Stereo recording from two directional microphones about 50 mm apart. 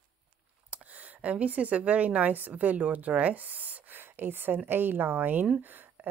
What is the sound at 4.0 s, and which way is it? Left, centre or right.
A woman's voice, right.